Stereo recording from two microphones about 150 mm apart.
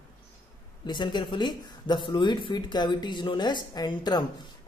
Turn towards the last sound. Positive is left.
turn(degrees=30)  # may be behind; listen again after turning